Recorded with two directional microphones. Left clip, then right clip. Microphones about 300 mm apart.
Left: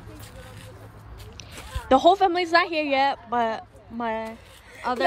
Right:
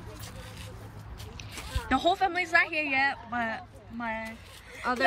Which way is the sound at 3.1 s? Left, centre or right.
Centre.